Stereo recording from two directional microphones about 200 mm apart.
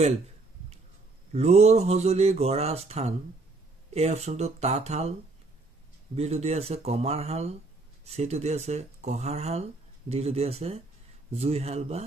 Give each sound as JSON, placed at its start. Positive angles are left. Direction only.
{"t": 1.3, "sound": "speech", "side_deg": -30}
{"t": 6.1, "sound": "speech", "side_deg": -30}